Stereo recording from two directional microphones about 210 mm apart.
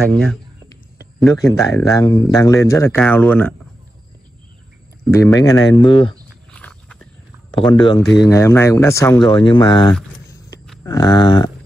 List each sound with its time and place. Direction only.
0.0 s speech: 5° left (ahead or behind)
1.6 s speech: 15° left (ahead or behind)
5.1 s speech: 15° left (ahead or behind)
6.5 s walk: 5° left (ahead or behind)
7.5 s speech: 20° left (ahead or behind)
8.0 s speech: centre (ahead or behind)
8.3 s speech: 15° left (ahead or behind)